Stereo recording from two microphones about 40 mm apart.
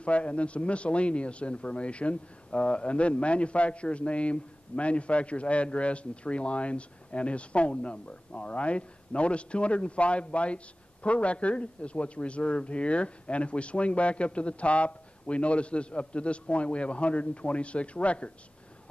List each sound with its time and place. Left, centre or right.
0.0 s speech: left